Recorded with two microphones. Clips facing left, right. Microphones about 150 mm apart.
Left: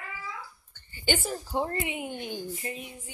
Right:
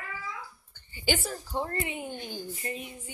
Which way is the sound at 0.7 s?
15° right (ahead or behind).